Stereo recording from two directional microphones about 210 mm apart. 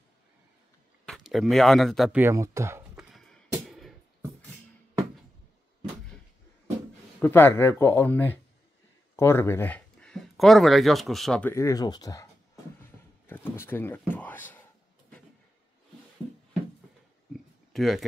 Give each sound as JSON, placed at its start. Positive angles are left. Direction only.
{"t": 1.0, "sound": "speech", "side_deg": 0}
{"t": 2.2, "sound": "speech", "side_deg": -15}
{"t": 3.0, "sound": "music", "side_deg": 0}
{"t": 7.2, "sound": "speech", "side_deg": 10}
{"t": 13.3, "sound": "a sound", "side_deg": 10}
{"t": 17.3, "sound": "a sound", "side_deg": 0}